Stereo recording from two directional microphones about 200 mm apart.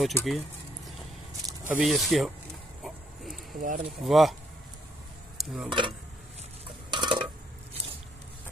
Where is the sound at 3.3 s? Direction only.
40° right (ahead or behind).